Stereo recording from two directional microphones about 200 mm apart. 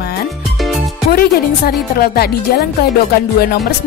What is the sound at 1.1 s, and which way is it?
Speech, 50° left (ahead or behind).